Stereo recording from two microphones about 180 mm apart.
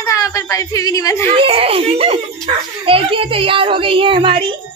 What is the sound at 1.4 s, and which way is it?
A child's voice, 30° right (ahead or behind).